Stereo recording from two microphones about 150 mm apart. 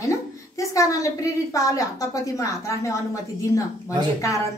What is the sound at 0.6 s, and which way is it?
A woman's voice, 20° left (ahead or behind).